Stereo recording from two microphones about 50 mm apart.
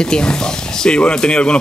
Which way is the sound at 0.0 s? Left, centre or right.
Centre.